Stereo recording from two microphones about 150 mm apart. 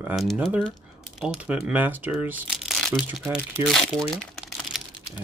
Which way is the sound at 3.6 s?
5° left (ahead or behind).